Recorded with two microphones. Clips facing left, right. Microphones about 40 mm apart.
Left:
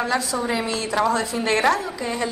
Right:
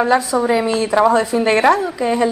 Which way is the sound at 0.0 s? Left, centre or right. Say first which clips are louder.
Right 8 dB; right.